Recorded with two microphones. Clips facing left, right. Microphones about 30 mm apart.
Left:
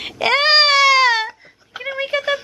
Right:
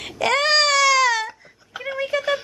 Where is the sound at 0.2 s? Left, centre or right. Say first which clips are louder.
Left 4 dB; left.